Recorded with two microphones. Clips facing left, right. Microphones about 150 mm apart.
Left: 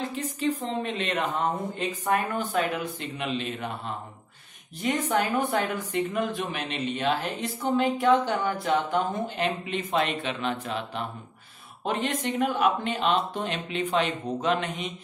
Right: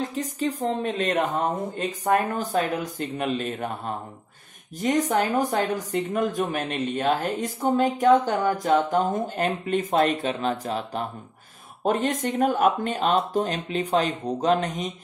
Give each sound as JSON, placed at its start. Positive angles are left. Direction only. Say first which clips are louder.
{"t": 0.0, "sound": "a woman's voice", "louder": "right 2 dB", "side_deg": -40}